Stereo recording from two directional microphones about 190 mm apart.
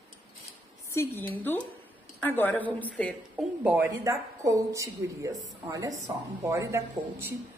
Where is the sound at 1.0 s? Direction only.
15° left (ahead or behind).